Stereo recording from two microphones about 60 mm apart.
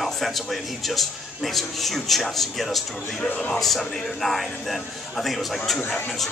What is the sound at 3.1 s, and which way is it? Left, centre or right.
Speech, left.